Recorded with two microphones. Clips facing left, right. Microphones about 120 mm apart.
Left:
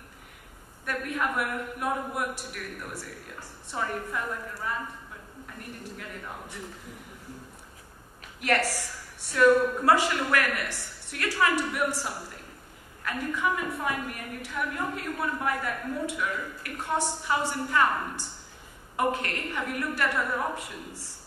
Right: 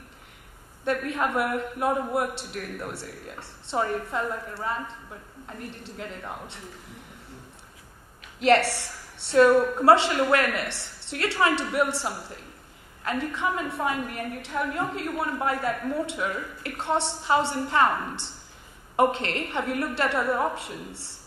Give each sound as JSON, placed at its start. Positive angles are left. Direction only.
{"t": 0.8, "sound": "a woman's voice", "side_deg": -25}
{"t": 5.9, "sound": "a woman's voice", "side_deg": -25}
{"t": 8.4, "sound": "a woman's voice", "side_deg": -25}
{"t": 13.0, "sound": "a woman's voice", "side_deg": -25}